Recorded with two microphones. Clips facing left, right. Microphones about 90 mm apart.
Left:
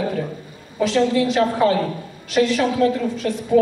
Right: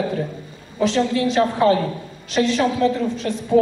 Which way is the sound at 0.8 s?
25° right (ahead or behind).